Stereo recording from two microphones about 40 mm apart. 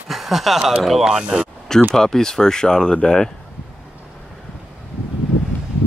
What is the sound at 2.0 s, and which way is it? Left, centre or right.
Speech, centre.